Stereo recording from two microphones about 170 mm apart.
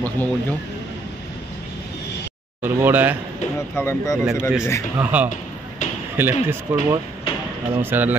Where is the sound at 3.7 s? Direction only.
15° left (ahead or behind).